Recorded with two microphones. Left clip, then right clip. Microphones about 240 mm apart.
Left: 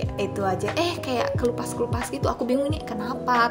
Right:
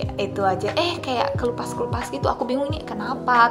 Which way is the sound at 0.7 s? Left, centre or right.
Left.